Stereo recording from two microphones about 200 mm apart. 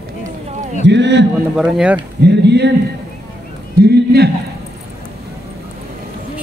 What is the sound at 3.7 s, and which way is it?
Speech, 55° right (ahead or behind).